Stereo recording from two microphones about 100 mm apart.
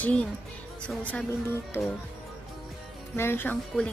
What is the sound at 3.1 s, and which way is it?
Speech, 25° left (ahead or behind).